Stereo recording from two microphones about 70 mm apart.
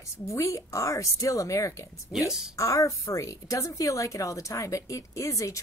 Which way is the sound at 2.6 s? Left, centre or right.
Left.